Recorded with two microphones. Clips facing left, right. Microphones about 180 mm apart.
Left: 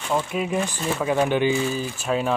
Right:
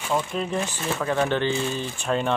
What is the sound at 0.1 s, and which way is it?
Speech, 10° left (ahead or behind).